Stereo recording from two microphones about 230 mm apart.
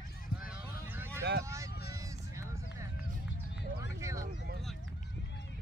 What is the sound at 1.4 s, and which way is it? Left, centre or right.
Speech, centre.